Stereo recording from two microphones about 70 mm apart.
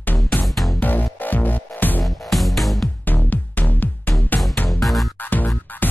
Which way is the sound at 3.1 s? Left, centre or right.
Left.